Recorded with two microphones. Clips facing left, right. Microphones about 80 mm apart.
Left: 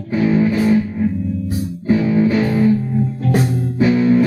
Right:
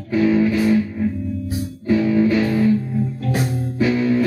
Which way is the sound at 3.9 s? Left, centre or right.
Left.